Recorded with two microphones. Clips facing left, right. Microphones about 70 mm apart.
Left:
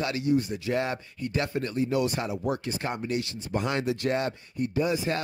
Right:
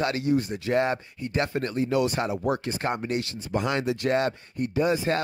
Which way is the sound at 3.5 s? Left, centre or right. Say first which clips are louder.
Right 2 dB; right.